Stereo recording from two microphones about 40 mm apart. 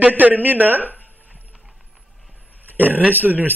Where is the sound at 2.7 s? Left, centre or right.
Right.